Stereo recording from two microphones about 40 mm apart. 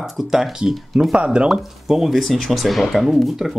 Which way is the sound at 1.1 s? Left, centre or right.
Right.